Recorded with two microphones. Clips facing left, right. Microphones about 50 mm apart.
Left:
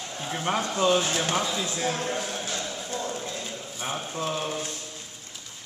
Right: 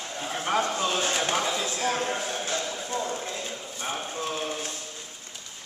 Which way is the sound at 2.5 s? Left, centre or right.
Centre.